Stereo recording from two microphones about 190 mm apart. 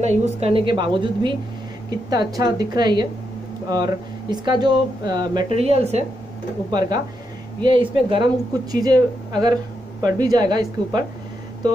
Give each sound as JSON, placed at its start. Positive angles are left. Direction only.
{"t": 0.0, "sound": "speech", "side_deg": -35}
{"t": 6.7, "sound": "speech", "side_deg": -20}